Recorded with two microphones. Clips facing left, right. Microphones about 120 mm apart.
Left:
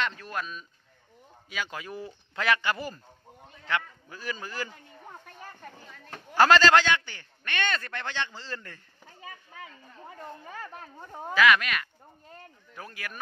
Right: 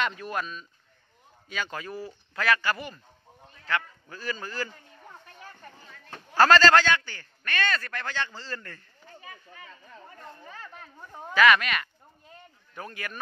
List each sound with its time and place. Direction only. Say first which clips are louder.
0.0 s speech: right 3 dB; 10° right (ahead or behind)
0.4 s a man's voice: right 2 dB; 5° left (ahead or behind)
2.0 s a man's voice: right 1 dB; 20° left (ahead or behind)
6.3 s a man's voice: right 1 dB; 15° left (ahead or behind)
11.3 s a sound: right 2 dB; centre (ahead or behind)
12.7 s speech: right 3 dB; centre (ahead or behind)